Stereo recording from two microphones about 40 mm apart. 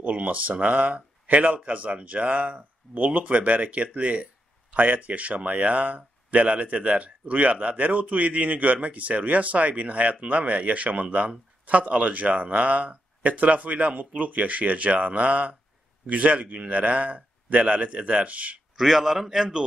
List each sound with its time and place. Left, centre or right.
0.0 s speech: right
18.8 s a man's voice: centre